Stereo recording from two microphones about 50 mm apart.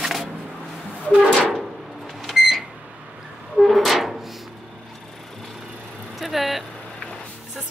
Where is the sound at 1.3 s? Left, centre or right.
Left.